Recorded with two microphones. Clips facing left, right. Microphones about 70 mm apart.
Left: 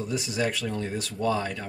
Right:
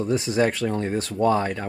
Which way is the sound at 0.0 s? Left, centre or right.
Right.